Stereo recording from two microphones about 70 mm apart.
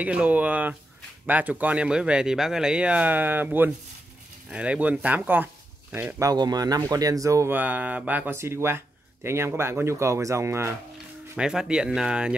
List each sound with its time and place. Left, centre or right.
0.0 s speech: centre
6.3 s speech: right
7.4 s speech: right
8.4 s speech: right
11.3 s speech: centre